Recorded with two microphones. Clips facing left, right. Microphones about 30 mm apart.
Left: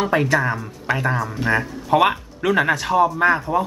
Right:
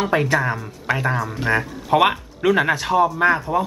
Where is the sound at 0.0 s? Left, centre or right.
Centre.